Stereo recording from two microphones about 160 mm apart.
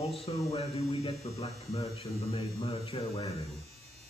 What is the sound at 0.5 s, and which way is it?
Speech, 40° left (ahead or behind).